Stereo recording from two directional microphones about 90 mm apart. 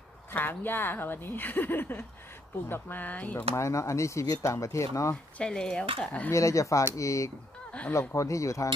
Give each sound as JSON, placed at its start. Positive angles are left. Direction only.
{"t": 0.3, "sound": "speech", "side_deg": 20}
{"t": 3.5, "sound": "speech", "side_deg": 35}
{"t": 5.4, "sound": "speech", "side_deg": 10}
{"t": 6.3, "sound": "speech", "side_deg": 35}